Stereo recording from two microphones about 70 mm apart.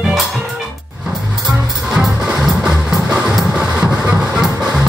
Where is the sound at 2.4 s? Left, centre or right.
Centre.